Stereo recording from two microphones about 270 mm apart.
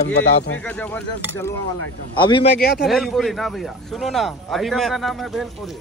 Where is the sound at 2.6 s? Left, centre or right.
Left.